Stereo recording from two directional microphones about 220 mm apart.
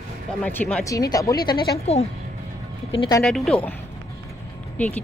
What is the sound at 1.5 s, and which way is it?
Speech, 45° left (ahead or behind).